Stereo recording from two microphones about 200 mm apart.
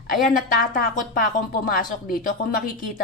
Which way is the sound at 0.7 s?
40° left (ahead or behind).